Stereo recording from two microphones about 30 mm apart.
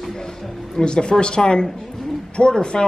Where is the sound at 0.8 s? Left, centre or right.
Left.